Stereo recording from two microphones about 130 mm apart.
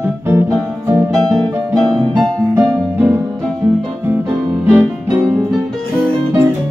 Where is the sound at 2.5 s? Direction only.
25° right (ahead or behind).